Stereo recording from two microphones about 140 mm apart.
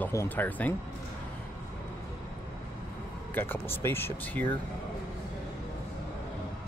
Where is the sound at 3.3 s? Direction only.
15° left (ahead or behind).